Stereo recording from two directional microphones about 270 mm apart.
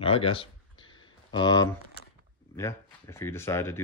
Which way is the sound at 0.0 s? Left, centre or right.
Left.